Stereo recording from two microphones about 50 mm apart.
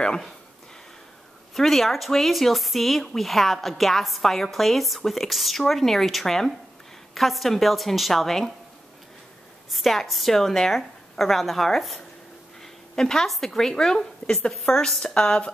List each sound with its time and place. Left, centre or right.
1.5 s speech: centre
9.7 s a woman's voice: centre
15.1 s music: centre